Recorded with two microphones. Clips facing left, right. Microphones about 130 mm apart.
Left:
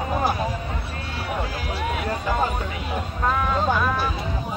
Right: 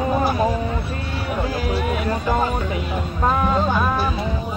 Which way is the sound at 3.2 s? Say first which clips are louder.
Right 3 dB; 25° right (ahead or behind).